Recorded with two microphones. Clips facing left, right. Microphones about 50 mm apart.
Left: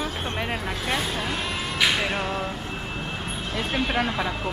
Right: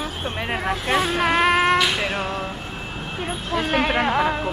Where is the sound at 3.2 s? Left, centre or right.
Centre.